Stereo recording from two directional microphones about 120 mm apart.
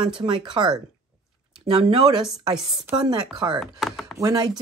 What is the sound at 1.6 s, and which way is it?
Speech, 55° right (ahead or behind).